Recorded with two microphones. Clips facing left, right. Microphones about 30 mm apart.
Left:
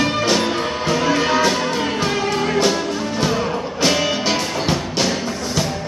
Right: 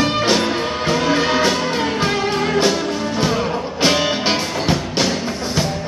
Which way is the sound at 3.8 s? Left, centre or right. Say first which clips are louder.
Right 1 dB; right.